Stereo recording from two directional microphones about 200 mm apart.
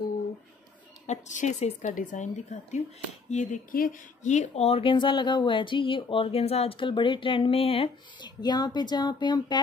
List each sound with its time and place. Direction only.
1.0 s a woman's voice: 35° left (ahead or behind)